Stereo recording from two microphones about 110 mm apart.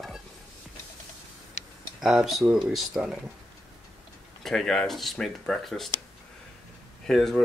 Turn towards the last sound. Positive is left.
turn(degrees=5)  # may be behind; listen again after turning